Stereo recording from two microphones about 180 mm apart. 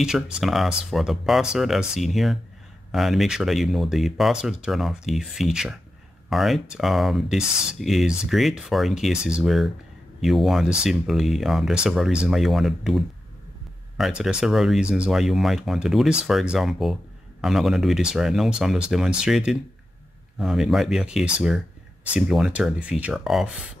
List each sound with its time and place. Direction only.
0.0 s speech: centre (ahead or behind)